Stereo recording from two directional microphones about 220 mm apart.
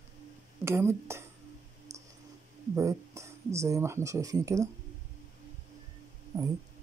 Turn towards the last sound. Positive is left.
turn(degrees=-15)  # may be behind; listen again after turning